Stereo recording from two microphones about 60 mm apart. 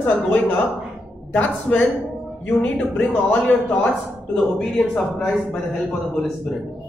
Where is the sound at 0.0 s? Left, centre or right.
Left.